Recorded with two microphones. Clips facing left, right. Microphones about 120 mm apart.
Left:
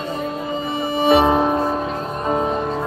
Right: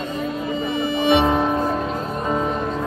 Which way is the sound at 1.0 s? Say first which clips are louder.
Left 3 dB; 30° left (ahead or behind).